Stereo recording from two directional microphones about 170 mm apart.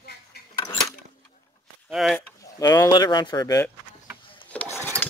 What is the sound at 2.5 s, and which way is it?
Speech, 20° left (ahead or behind).